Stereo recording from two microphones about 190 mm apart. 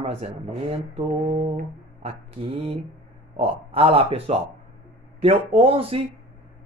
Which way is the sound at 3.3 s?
30° right (ahead or behind).